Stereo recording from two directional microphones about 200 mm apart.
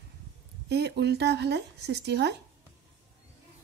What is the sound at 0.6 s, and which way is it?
Speech, 55° right (ahead or behind).